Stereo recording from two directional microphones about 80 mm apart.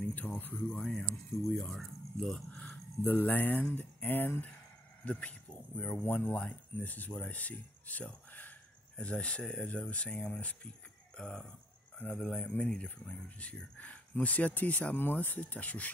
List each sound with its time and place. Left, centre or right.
0.7 s speech: centre
3.0 s speech: left